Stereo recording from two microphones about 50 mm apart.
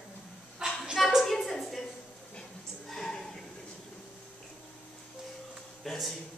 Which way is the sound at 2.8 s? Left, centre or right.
Centre.